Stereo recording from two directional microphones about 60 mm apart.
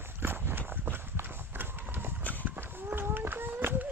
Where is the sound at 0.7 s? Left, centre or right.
Right.